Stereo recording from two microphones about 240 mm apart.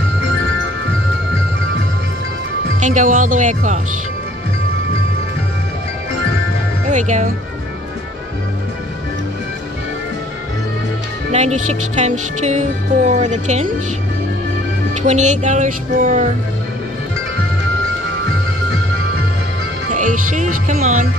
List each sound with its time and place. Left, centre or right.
2.8 s speech: right
6.9 s speech: right
11.3 s music: right
15.0 s speech: right
19.9 s music: right